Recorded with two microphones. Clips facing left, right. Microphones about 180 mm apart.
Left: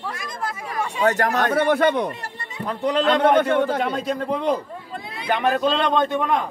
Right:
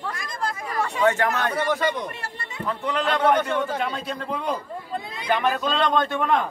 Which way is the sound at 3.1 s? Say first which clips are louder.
Left 3 dB; 55° left (ahead or behind).